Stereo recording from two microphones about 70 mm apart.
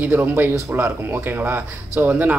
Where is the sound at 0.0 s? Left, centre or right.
Right.